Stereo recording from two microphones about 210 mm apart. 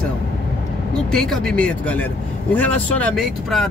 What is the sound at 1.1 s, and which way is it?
Speech, centre (ahead or behind).